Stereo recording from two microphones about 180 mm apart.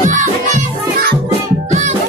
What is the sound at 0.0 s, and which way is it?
Music, 45° right (ahead or behind).